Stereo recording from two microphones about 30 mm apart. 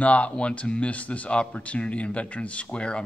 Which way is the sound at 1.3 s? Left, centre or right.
Left.